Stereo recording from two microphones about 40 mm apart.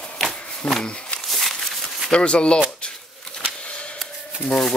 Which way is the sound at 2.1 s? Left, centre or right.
Left.